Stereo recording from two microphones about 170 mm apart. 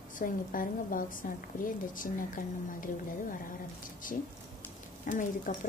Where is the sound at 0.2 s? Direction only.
55° left (ahead or behind).